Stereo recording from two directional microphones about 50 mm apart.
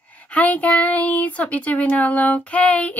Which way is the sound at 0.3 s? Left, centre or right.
Left.